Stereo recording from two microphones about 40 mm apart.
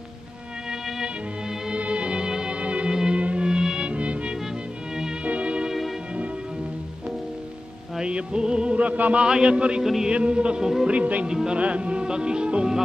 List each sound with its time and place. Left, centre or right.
1.7 s music: right
3.4 s music: centre
8.0 s music: right
8.7 s music: right
9.2 s speech: right
10.9 s music: right
11.2 s speech: centre